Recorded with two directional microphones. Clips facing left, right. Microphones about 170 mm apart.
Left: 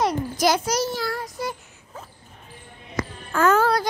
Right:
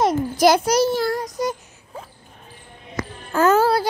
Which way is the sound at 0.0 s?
55° right (ahead or behind).